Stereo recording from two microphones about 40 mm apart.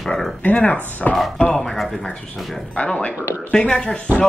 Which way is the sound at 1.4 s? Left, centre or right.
Centre.